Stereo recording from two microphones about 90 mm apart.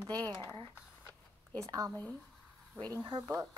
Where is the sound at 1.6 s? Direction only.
40° right (ahead or behind).